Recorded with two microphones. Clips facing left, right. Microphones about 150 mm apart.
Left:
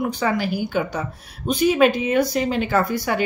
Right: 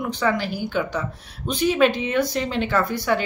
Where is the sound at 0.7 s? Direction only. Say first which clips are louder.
Left 1 dB; 45° left (ahead or behind).